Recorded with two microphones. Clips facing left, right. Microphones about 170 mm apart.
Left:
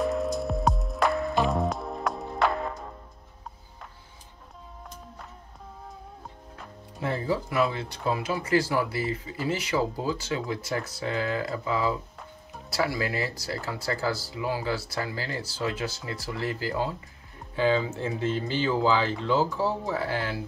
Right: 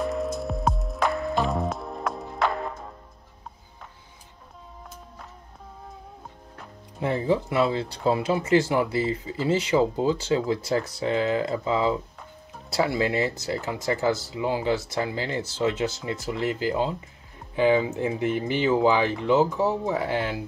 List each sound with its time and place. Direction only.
0.0 s music: centre (ahead or behind)
7.0 s speech: 20° right (ahead or behind)